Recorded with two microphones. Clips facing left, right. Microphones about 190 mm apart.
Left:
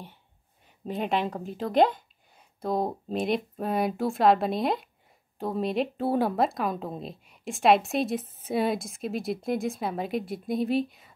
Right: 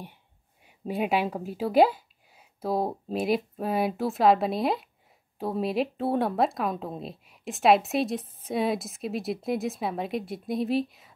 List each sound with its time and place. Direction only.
0.7 s a woman's voice: 10° right (ahead or behind)